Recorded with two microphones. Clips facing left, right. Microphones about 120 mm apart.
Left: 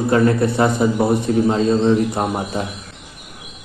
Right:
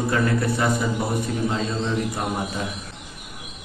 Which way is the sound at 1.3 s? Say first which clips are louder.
Left 10 dB; 40° left (ahead or behind).